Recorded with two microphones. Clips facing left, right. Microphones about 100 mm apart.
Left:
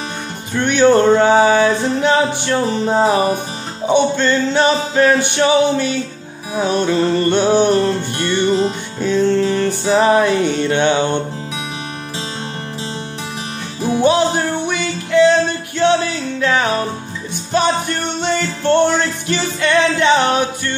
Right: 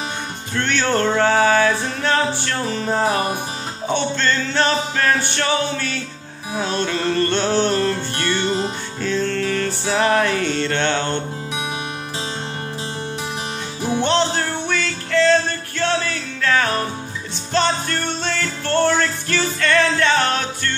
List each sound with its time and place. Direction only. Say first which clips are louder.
0.6 s music: left 8 dB; 15° left (ahead or behind)
14.0 s music: left 6 dB; 10° left (ahead or behind)